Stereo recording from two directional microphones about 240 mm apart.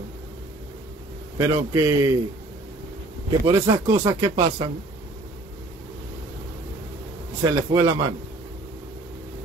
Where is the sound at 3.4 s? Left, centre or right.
Centre.